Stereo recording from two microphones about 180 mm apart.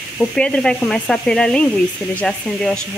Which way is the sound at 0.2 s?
5° left (ahead or behind).